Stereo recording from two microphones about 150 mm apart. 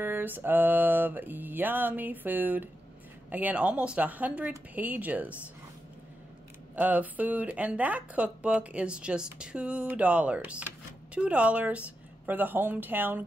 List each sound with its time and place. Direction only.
0.0 s speech: 15° right (ahead or behind)
6.7 s speech: 10° right (ahead or behind)